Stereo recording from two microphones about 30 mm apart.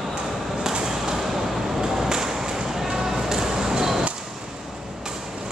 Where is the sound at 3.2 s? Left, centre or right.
Centre.